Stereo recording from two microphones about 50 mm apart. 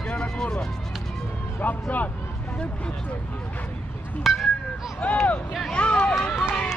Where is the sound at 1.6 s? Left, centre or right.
Left.